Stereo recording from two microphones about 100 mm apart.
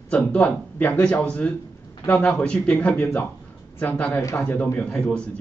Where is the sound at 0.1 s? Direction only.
15° left (ahead or behind).